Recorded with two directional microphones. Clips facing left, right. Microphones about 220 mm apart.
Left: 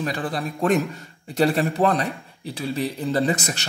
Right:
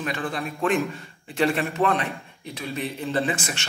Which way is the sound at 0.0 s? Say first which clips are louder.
Left 2 dB; 35° left (ahead or behind).